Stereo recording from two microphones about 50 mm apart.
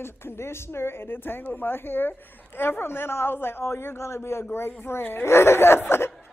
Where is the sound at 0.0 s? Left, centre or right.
Left.